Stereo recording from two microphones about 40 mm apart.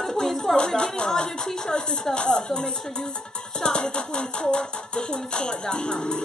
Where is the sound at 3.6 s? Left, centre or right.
Left.